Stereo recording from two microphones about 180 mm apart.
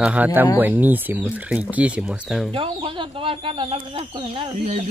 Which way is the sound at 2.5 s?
25° right (ahead or behind).